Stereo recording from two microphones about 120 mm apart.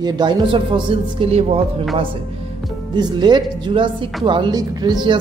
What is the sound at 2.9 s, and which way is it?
A man's voice, 35° right (ahead or behind).